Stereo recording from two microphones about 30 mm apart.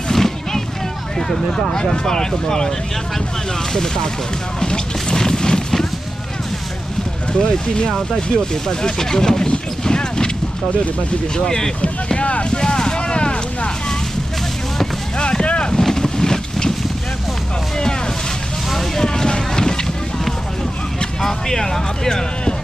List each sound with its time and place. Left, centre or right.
0.1 s vehicle: centre
1.3 s speech: left
3.7 s speech: left
4.6 s music: left
7.3 s speech: left
8.6 s speech: centre
9.8 s a sound: left
11.3 s speech: left
12.2 s vehicle: left
15.1 s boat: left
15.8 s boat: left
18.9 s vehicle: left
21.2 s speech: centre